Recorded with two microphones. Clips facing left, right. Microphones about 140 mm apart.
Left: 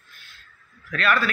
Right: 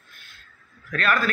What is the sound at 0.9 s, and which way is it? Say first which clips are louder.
Speech: left 1 dB; 45° right (ahead or behind).